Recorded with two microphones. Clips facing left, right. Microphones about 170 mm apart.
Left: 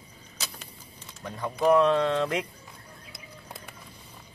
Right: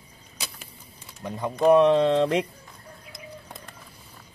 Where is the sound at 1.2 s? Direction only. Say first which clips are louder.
Right 4 dB; 20° right (ahead or behind).